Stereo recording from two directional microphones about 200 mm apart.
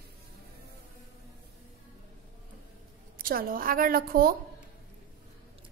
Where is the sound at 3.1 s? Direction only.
45° right (ahead or behind).